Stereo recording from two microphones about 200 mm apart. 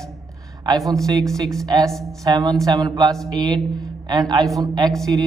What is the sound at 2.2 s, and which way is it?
A man's voice, 15° right (ahead or behind).